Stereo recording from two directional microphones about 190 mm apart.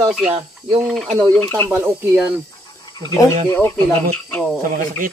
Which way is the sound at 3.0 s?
15° left (ahead or behind).